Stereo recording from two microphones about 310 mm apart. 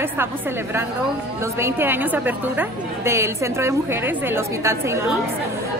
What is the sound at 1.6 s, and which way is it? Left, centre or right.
A woman's voice, centre.